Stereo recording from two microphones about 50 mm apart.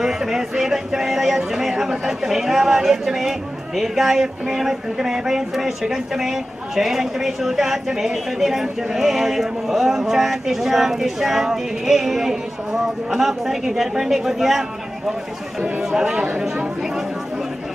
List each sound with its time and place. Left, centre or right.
0.0 s speech: centre
15.6 s speech: right